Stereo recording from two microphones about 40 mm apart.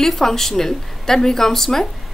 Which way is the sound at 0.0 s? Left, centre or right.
Centre.